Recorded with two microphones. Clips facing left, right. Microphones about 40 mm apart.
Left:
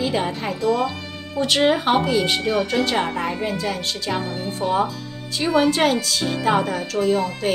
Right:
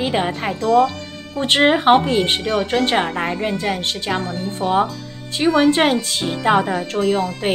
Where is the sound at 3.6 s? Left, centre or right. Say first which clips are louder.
Right 3 dB; right.